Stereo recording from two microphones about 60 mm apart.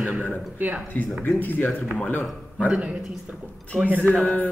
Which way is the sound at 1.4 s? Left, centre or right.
Left.